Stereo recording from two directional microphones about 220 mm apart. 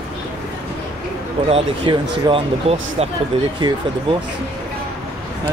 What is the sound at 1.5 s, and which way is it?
Speech, 25° right (ahead or behind).